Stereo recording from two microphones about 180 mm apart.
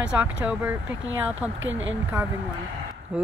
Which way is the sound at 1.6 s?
90° right.